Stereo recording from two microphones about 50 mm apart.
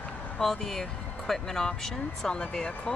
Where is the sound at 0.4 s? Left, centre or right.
Centre.